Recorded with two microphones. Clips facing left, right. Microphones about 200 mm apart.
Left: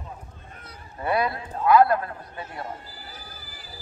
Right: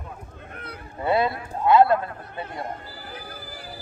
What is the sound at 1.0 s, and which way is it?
A man's voice, 25° right (ahead or behind).